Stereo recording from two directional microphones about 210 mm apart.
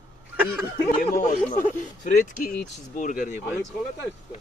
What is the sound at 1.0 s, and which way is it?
Speech, 40° left (ahead or behind).